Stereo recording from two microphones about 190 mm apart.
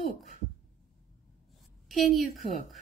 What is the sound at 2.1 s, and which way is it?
Speech, 35° left (ahead or behind).